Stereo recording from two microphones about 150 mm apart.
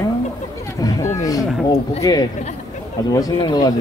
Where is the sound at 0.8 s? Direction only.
25° left (ahead or behind).